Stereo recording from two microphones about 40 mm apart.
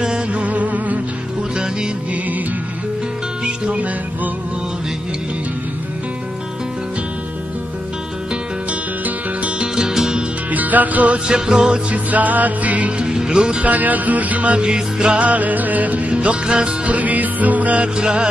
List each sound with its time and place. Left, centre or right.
0.0 s music: right
0.4 s music: right
3.4 s music: right
9.6 s music: centre
10.5 s music: right
11.2 s music: centre
11.9 s music: right
13.0 s music: centre
13.6 s music: right
14.6 s music: right
15.2 s music: right
16.8 s music: right
17.9 s music: right